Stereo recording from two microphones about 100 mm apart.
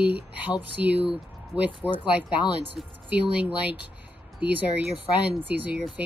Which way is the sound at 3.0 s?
15° right (ahead or behind).